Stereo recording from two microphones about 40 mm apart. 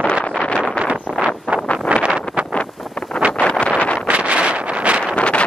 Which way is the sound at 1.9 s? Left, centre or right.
Right.